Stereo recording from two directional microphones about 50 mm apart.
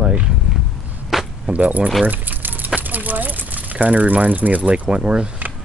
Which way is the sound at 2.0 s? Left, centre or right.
Right.